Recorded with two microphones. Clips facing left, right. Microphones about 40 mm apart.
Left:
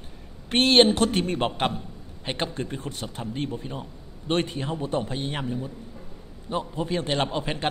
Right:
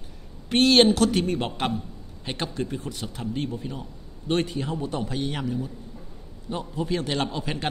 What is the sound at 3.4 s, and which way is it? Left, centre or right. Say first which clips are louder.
A man's voice: left 2 dB; left.